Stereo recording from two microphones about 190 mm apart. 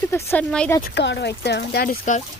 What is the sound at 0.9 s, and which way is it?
Speech, 60° left (ahead or behind).